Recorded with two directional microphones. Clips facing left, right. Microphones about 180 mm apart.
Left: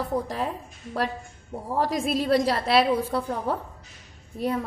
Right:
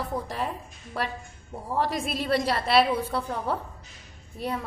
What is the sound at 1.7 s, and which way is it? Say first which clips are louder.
Speech: left 3 dB; 40° left (ahead or behind).